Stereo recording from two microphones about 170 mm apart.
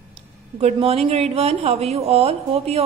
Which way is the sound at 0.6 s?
35° right (ahead or behind).